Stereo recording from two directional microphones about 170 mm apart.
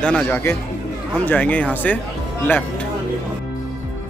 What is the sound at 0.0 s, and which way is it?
Speech, 10° left (ahead or behind).